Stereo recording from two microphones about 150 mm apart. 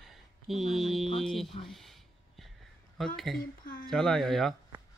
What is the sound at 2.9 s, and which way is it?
Speech, centre (ahead or behind).